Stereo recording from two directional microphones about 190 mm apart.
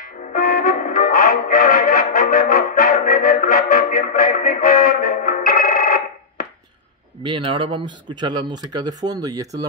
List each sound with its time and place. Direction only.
0.0 s music: 50° left (ahead or behind)
7.2 s speech: 25° right (ahead or behind)